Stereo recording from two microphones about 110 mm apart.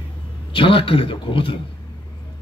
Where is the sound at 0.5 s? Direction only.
55° left (ahead or behind).